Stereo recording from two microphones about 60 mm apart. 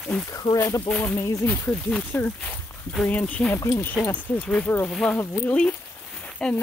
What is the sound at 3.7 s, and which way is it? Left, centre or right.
Speech, left.